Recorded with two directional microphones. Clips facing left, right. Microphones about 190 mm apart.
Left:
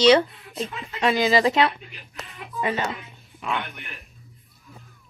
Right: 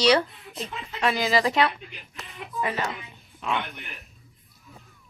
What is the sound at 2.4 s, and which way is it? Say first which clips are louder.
A man's voice: left 2 dB; centre (ahead or behind).